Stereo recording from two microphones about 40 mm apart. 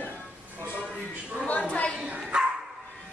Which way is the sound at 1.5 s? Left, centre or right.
Left.